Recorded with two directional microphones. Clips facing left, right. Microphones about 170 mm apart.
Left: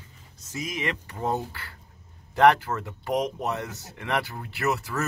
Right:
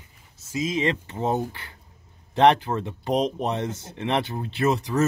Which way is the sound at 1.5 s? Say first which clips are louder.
Right 1 dB; 20° right (ahead or behind).